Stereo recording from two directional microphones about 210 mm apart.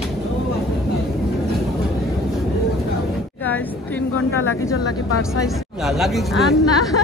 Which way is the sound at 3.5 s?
10° left (ahead or behind).